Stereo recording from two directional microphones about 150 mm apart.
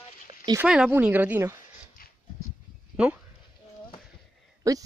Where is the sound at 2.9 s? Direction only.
10° right (ahead or behind).